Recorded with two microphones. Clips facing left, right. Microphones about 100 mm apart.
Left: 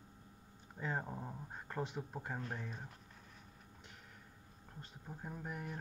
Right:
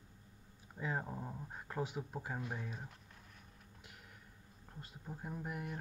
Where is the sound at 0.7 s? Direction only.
Centre (ahead or behind).